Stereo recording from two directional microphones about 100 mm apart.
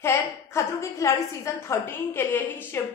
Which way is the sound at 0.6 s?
30° left (ahead or behind).